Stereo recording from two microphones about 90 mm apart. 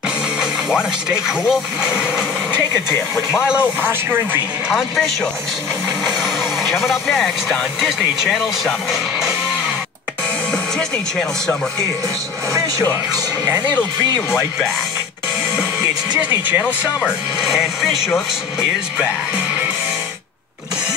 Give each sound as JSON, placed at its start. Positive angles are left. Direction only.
{"t": 1.0, "sound": "speech", "side_deg": -5}
{"t": 2.9, "sound": "speech", "side_deg": 30}
{"t": 4.6, "sound": "speech", "side_deg": 0}
{"t": 10.5, "sound": "music", "side_deg": 5}
{"t": 16.2, "sound": "speech", "side_deg": -20}
{"t": 17.0, "sound": "speech", "side_deg": -5}